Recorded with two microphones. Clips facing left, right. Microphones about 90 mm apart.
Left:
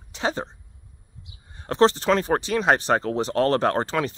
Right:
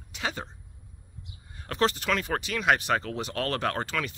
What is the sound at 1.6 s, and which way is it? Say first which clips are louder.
Speech: left 8 dB; 30° left (ahead or behind).